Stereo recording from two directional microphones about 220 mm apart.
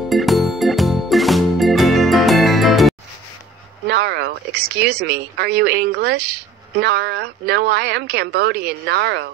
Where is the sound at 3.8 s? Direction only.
50° right (ahead or behind).